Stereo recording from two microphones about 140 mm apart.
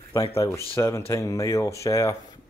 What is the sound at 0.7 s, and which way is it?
Speech, 20° left (ahead or behind).